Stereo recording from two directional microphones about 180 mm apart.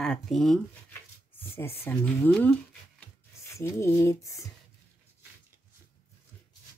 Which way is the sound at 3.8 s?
15° left (ahead or behind).